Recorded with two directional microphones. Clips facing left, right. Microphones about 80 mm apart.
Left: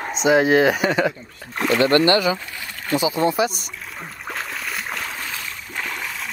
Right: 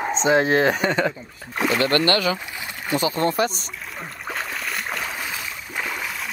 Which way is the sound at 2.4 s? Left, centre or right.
Centre.